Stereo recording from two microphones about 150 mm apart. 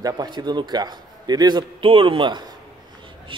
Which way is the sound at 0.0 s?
25° right (ahead or behind).